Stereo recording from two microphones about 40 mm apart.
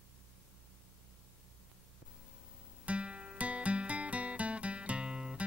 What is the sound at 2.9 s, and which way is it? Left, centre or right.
Music, right.